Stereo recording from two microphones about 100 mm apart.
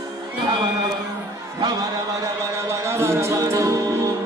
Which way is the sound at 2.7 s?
25° right (ahead or behind).